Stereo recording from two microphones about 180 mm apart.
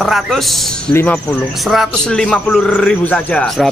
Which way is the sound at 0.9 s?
10° left (ahead or behind).